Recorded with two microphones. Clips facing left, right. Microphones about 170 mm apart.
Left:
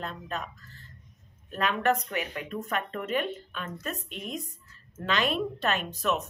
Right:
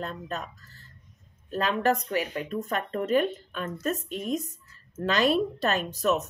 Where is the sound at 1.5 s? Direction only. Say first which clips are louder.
Right 2 dB; 30° right (ahead or behind).